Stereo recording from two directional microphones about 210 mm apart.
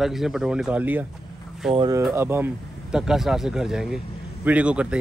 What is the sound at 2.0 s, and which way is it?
Speech, 10° right (ahead or behind).